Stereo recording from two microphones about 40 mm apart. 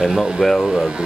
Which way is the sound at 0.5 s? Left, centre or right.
Centre.